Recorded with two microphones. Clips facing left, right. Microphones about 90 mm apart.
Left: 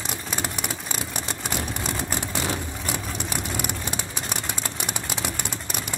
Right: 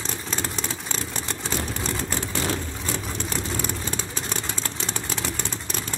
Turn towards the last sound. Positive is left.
turn(degrees=15)  # may be behind; listen again after turning